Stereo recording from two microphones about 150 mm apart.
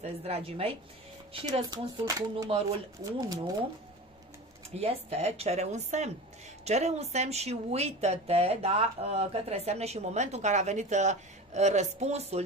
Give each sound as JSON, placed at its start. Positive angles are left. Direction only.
{"t": 0.0, "sound": "a woman's voice", "side_deg": -40}
{"t": 1.6, "sound": "speech", "side_deg": -25}
{"t": 4.7, "sound": "speech", "side_deg": -45}